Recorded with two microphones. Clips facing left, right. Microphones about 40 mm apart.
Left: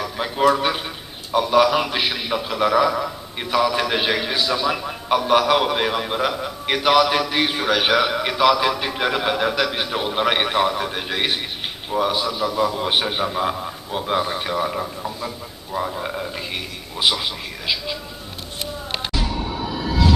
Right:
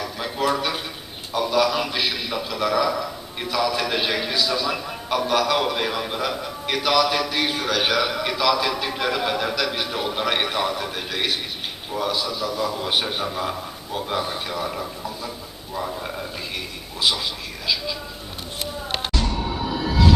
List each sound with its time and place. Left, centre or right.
0.0 s a sound: centre
1.3 s a man's voice: centre
19.1 s music: centre